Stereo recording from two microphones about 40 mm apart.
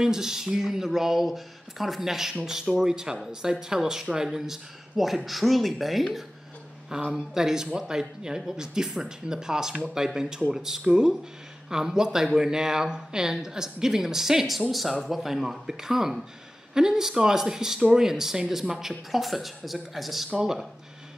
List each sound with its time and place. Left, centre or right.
0.0 s speech: centre
6.9 s speech: centre